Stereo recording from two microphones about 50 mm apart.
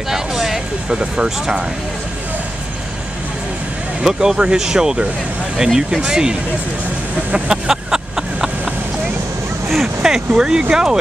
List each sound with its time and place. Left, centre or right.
0.1 s vehicle: centre
0.9 s speech: centre
4.0 s speech: centre
7.3 s vehicle: centre
9.7 s speech: centre
10.3 s speech: centre